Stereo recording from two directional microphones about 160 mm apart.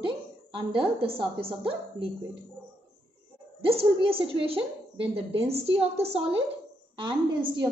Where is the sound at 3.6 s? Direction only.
35° right (ahead or behind).